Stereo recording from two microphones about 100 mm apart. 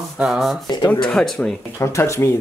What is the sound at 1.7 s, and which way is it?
Speech, 25° left (ahead or behind).